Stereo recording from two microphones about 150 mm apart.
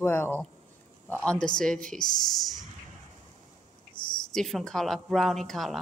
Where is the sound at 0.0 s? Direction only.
15° left (ahead or behind).